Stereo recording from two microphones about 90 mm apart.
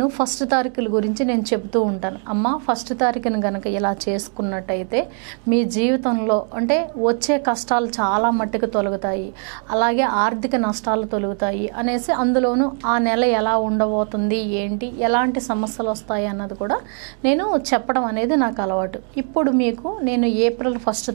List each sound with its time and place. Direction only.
0.2 s a woman's voice: 10° right (ahead or behind)